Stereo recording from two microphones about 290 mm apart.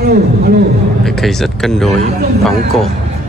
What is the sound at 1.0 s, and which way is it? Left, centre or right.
Speech, centre.